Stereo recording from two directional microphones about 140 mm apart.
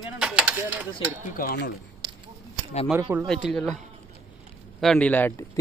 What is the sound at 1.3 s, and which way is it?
Speech, 90° left.